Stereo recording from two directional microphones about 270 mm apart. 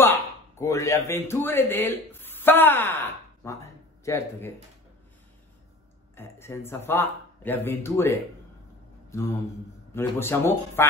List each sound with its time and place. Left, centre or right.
0.0 s speech: centre
6.1 s speech: centre
9.9 s speech: centre